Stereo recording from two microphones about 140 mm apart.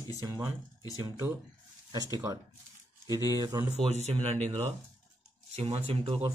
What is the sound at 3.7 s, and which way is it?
Speech, 50° right (ahead or behind).